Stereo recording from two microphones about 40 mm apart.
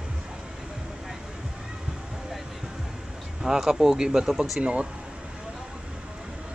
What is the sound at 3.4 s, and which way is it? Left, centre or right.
Speech, centre.